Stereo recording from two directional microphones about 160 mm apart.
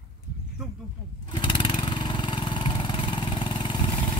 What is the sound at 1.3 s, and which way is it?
Vehicle, 30° left (ahead or behind).